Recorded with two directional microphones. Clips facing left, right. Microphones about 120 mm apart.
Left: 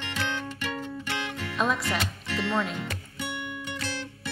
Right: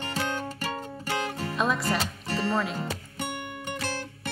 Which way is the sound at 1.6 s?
Centre (ahead or behind).